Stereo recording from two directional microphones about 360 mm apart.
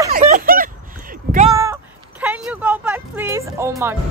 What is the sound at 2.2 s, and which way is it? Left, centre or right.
Speech, centre.